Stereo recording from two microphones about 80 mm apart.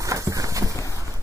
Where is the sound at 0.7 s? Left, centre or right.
Left.